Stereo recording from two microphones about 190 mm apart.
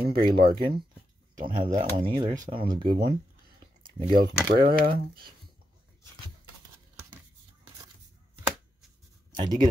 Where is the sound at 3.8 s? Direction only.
25° right (ahead or behind).